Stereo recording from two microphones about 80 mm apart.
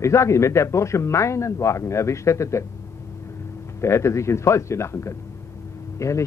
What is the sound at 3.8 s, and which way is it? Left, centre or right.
Speech, left.